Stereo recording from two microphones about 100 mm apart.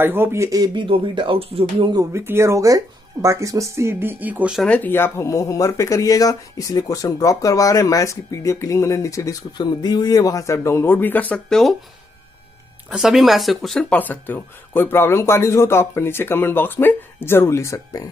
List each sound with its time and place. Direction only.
0.0 s speech: 20° right (ahead or behind)
0.5 s speech: 40° right (ahead or behind)
0.8 s speech: 60° right (ahead or behind)
2.1 s speech: 25° right (ahead or behind)
4.6 s speech: 15° left (ahead or behind)
9.6 s speech: 45° left (ahead or behind); by 11.7 s 5° left (ahead or behind)
12.9 s speech: 5° right (ahead or behind)
13.8 s speech: 15° left (ahead or behind)